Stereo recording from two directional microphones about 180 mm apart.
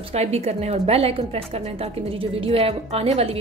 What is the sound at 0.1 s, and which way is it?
A woman's voice, 35° right (ahead or behind).